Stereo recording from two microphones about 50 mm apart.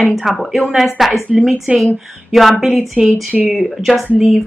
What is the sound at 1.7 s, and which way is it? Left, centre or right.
Speech, right.